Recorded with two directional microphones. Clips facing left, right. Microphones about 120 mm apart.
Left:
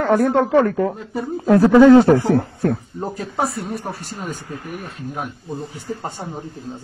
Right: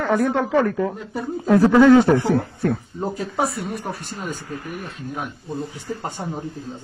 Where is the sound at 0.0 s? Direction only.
50° left (ahead or behind).